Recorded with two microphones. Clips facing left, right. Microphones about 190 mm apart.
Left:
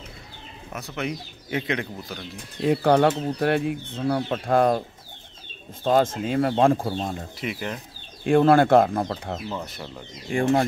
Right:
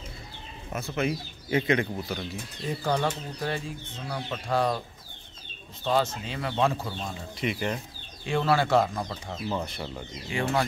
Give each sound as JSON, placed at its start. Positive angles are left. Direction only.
{"t": 0.7, "sound": "speech", "side_deg": 0}
{"t": 2.6, "sound": "speech", "side_deg": 70}
{"t": 5.9, "sound": "speech", "side_deg": 50}
{"t": 7.3, "sound": "speech", "side_deg": 0}
{"t": 8.2, "sound": "speech", "side_deg": 50}
{"t": 10.3, "sound": "speech", "side_deg": 45}